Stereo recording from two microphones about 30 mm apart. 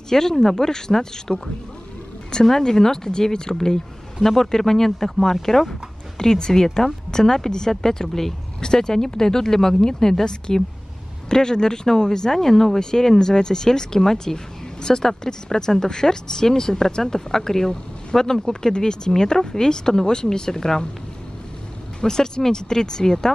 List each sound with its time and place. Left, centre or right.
0.1 s speech: centre
2.4 s speech: centre
8.5 s speech: left
22.0 s speech: left